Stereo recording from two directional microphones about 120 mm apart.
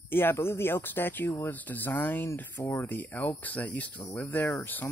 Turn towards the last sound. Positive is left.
turn(degrees=15)  # may be behind; listen again after turning